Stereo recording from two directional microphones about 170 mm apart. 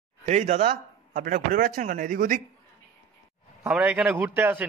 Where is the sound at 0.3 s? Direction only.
45° right (ahead or behind).